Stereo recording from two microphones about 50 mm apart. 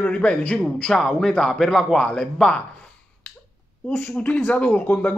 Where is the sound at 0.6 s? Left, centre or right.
Centre.